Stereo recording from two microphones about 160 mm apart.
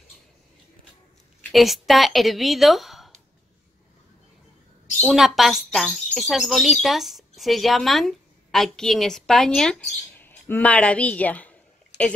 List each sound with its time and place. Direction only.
1.5 s a woman's voice: centre (ahead or behind)
5.0 s speech: centre (ahead or behind)